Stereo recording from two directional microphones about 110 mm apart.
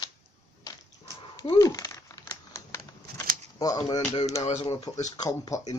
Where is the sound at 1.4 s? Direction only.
30° left (ahead or behind).